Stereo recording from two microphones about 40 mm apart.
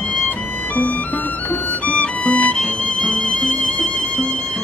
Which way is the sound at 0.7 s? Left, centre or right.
Left.